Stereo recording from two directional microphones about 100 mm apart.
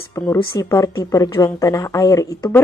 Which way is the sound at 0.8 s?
40° left (ahead or behind).